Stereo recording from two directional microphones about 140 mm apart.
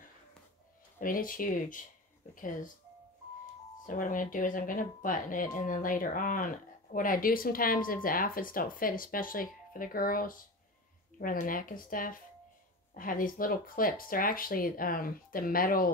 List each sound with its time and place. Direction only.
0.9 s speech: 80° left
3.8 s speech: 75° left (ahead or behind); by 15.9 s 90° left